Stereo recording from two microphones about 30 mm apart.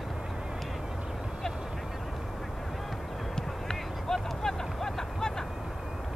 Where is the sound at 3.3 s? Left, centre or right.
Centre.